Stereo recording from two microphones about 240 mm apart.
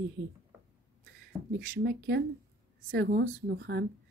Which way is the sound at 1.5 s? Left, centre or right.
Right.